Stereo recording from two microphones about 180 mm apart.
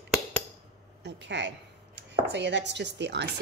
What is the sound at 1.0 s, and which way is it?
Speech, 80° right.